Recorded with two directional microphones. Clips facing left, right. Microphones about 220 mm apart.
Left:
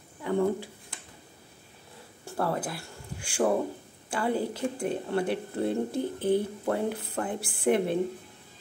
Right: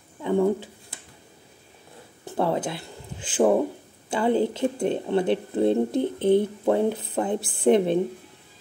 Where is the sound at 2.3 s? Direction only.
25° right (ahead or behind).